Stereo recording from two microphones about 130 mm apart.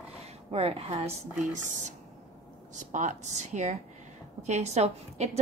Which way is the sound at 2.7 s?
70° right (ahead or behind).